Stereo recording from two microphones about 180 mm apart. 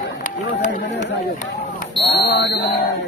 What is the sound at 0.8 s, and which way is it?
Run, 70° left (ahead or behind).